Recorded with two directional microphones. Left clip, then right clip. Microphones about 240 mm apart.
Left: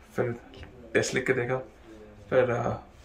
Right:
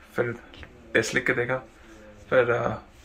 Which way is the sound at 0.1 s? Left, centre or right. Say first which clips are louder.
Right 3 dB; centre.